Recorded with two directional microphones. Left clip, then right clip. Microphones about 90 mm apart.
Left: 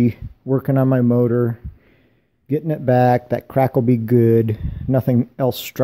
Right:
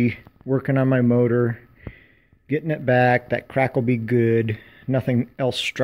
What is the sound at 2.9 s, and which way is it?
Speech, 35° left (ahead or behind).